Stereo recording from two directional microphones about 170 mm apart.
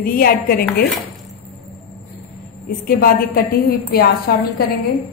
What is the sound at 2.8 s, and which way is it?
A woman's voice, 60° left (ahead or behind).